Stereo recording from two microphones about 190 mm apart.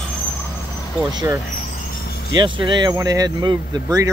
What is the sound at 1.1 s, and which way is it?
Speech, 20° right (ahead or behind).